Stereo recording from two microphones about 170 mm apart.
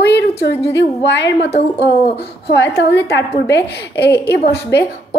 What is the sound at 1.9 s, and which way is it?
A woman's voice, 75° left (ahead or behind).